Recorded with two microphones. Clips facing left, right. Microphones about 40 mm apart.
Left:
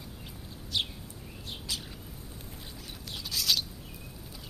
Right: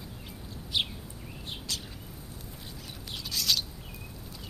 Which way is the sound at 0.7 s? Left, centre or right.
Centre.